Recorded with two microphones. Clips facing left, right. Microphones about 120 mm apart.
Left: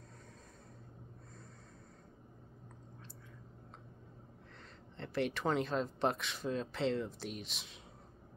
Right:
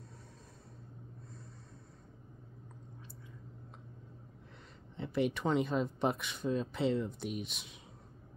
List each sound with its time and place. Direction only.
4.9 s speech: 5° right (ahead or behind)